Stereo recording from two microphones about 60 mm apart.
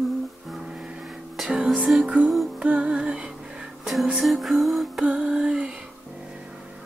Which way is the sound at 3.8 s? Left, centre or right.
Centre.